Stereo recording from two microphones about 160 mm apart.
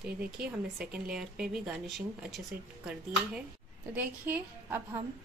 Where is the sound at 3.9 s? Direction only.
10° right (ahead or behind).